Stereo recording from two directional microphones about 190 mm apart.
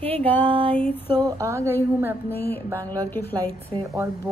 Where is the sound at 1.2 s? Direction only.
15° right (ahead or behind).